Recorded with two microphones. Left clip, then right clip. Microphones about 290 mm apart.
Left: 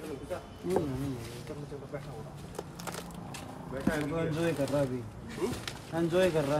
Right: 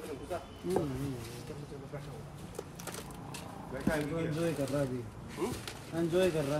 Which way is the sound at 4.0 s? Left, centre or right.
Centre.